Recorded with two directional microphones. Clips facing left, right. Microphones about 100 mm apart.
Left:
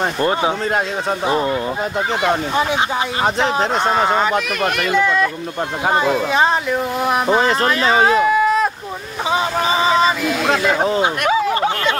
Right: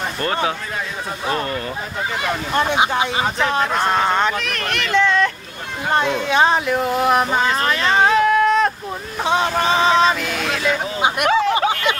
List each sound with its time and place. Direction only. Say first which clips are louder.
0.2 s speech: left 2 dB; 15° left (ahead or behind)
2.5 s speech: left 1 dB; 5° left (ahead or behind)
3.3 s speech: even; 20° left (ahead or behind); by 10.3 s centre (ahead or behind)
10.4 s speech: left 6 dB; 40° left (ahead or behind)
11.2 s speech: right 2 dB; 5° left (ahead or behind)